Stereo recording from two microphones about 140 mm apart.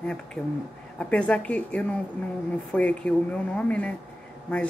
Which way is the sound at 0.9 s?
10° left (ahead or behind).